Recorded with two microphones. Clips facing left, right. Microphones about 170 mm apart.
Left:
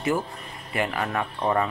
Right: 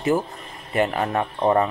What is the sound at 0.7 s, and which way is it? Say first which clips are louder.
Speech: right 5 dB; 35° right (ahead or behind).